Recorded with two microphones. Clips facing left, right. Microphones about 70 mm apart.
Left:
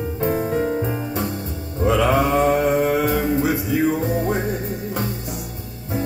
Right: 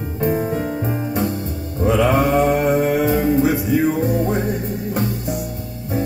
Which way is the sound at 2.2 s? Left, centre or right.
Left.